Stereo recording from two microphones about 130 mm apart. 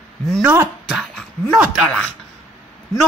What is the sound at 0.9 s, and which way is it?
Speech, centre (ahead or behind).